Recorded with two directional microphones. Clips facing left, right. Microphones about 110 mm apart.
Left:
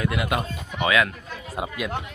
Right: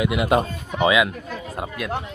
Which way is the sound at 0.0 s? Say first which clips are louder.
Right 6 dB; 20° right (ahead or behind).